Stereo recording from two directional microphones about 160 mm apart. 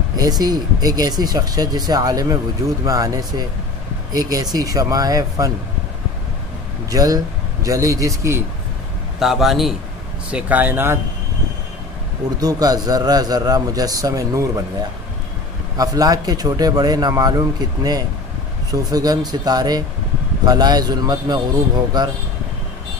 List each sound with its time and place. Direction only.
0.2 s a man's voice: 25° right (ahead or behind)
6.9 s a man's voice: 20° right (ahead or behind)
9.2 s a man's voice: centre (ahead or behind)
12.4 s a man's voice: 25° right (ahead or behind)
15.8 s a man's voice: 25° right (ahead or behind)